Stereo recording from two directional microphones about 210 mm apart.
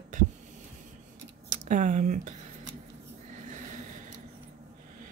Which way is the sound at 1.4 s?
35° right (ahead or behind).